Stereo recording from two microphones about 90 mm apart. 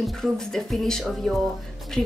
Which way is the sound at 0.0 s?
5° left (ahead or behind).